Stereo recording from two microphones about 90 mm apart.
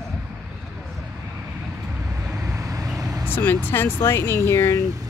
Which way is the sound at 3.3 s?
20° left (ahead or behind).